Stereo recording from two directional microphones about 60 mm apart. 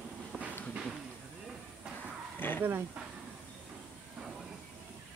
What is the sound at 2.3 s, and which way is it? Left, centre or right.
Dog, left.